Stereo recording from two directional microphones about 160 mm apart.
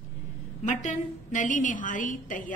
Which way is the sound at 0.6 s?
50° left (ahead or behind).